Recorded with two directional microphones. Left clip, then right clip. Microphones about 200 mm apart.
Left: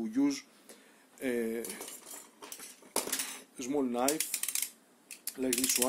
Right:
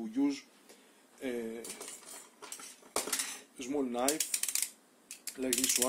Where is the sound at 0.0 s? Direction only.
15° left (ahead or behind).